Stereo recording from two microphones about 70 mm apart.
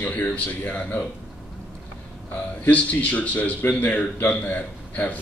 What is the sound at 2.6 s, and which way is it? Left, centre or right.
A man's voice, centre.